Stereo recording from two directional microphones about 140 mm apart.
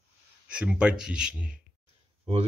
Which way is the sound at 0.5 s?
10° right (ahead or behind).